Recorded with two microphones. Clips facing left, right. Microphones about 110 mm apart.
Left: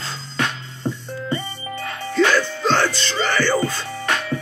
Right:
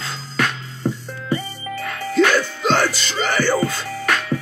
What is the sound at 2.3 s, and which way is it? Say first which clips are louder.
Music: even; 15° right (ahead or behind).